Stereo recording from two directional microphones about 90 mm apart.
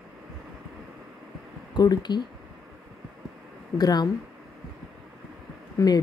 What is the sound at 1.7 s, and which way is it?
Speech, 50° left (ahead or behind).